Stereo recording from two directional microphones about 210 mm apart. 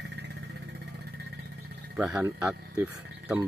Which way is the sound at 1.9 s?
5° right (ahead or behind).